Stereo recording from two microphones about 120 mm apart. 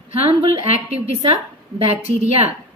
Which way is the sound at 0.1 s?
60° right (ahead or behind).